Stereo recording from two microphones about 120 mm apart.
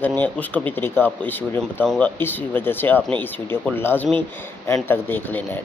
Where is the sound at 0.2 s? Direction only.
15° left (ahead or behind).